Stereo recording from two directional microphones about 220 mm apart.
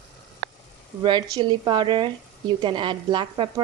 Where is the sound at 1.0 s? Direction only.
20° right (ahead or behind).